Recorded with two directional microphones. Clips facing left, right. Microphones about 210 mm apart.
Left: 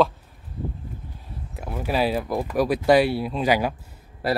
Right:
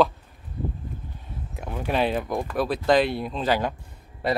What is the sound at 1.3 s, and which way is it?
Speech, 5° left (ahead or behind).